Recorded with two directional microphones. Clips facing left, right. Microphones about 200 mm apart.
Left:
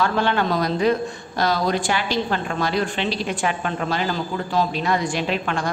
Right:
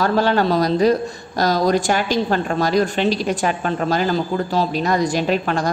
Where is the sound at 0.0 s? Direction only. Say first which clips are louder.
Right 4 dB; 40° right (ahead or behind).